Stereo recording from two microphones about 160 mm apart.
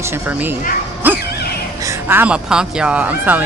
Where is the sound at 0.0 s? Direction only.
10° right (ahead or behind).